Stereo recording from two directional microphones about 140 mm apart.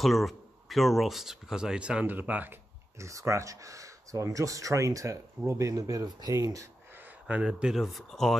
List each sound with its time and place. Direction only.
0.0 s speech: centre (ahead or behind); by 6.7 s 25° right (ahead or behind)
7.2 s speech: 10° right (ahead or behind)